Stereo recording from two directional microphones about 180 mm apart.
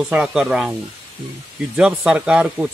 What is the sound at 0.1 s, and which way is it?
Speech, 5° right (ahead or behind).